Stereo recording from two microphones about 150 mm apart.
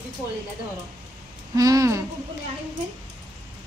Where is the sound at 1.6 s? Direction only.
25° right (ahead or behind).